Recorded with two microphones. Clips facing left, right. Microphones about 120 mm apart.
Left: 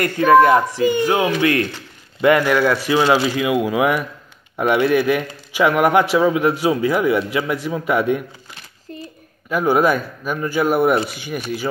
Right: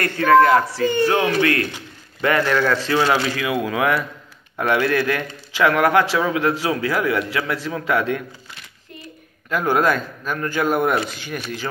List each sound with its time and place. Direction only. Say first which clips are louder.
0.0 s a man's voice: left 2 dB; 15° left (ahead or behind)
9.5 s a man's voice: left 3 dB; 15° left (ahead or behind)